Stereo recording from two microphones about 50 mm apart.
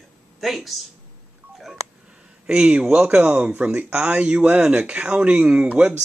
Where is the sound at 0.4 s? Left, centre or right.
Centre.